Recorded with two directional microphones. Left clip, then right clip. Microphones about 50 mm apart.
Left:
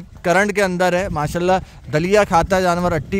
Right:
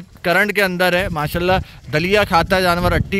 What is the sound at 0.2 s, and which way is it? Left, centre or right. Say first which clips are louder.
A man's voice: even; left.